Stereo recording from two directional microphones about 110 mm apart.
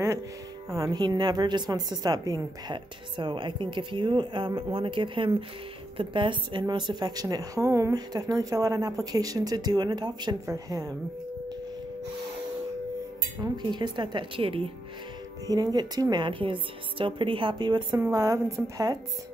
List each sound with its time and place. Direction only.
0.7 s a woman's voice: 30° right (ahead or behind)
13.4 s a woman's voice: 40° right (ahead or behind)
15.5 s a woman's voice: 40° right (ahead or behind)